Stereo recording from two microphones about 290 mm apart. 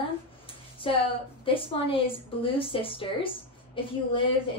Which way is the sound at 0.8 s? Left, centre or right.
Centre.